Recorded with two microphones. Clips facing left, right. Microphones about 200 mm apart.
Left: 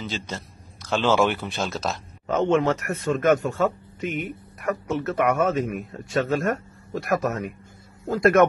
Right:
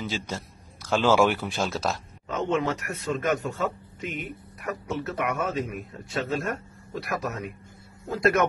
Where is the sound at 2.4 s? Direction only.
45° left (ahead or behind).